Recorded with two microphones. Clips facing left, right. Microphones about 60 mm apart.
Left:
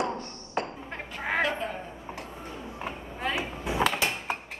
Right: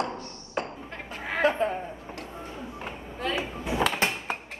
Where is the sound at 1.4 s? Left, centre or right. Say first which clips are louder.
Right 5 dB; right.